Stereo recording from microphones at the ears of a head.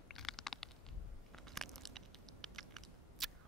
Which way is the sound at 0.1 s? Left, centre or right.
Left.